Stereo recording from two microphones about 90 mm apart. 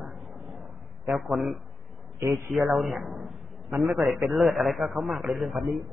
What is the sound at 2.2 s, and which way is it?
Speech, 25° right (ahead or behind).